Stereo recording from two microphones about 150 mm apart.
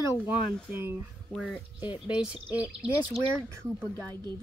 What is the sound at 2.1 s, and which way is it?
Speech, 5° right (ahead or behind).